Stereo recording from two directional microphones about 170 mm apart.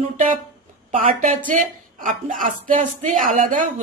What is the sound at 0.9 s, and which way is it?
A woman's voice, 50° right (ahead or behind).